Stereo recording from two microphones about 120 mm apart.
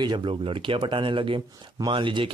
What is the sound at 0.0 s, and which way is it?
Speech, 40° right (ahead or behind).